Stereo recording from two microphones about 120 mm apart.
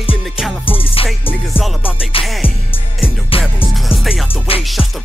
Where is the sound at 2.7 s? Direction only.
50° left (ahead or behind).